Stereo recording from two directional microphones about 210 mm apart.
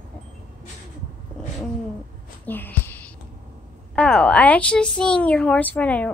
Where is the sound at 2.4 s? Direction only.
10° left (ahead or behind).